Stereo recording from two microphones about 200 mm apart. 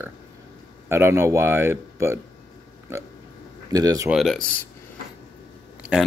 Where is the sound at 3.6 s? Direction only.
20° right (ahead or behind).